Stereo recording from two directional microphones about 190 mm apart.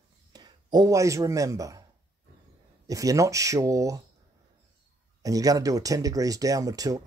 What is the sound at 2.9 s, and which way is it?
Speech, 20° right (ahead or behind).